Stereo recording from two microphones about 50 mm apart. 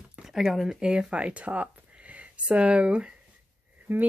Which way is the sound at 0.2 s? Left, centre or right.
Centre.